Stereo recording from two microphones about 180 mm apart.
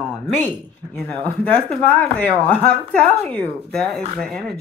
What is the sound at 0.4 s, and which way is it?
Speech, 10° left (ahead or behind).